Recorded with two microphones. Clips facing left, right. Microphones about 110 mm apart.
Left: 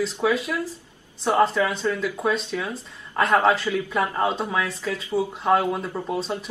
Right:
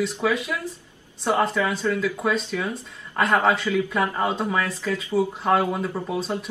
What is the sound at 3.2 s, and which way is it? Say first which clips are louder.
Speech: left 1 dB; centre (ahead or behind).